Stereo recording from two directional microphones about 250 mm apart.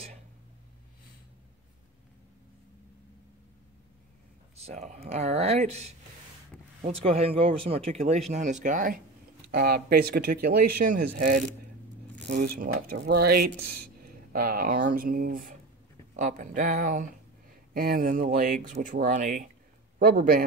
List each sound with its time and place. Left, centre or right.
4.6 s speech: right
12.5 s speech: right